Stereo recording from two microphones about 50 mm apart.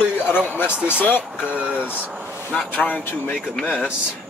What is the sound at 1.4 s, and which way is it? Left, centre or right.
Speech, right.